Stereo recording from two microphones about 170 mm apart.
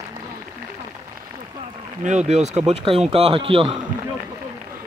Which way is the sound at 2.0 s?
40° right (ahead or behind).